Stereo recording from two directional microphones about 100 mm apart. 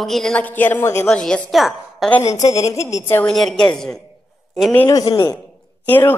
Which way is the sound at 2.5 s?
30° left (ahead or behind).